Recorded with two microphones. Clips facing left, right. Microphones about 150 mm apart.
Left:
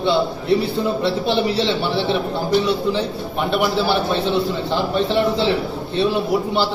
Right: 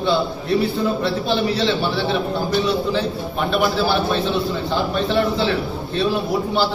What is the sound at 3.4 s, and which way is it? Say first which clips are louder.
A man's voice: even; 20° left (ahead or behind).